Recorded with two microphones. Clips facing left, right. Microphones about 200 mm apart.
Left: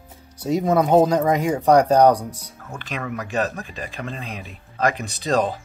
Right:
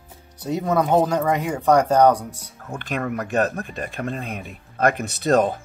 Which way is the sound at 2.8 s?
50° right (ahead or behind).